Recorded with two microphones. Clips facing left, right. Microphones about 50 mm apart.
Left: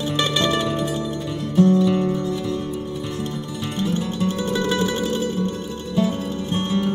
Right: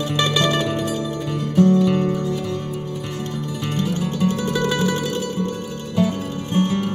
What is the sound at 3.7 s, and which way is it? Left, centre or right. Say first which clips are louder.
Music: even; left.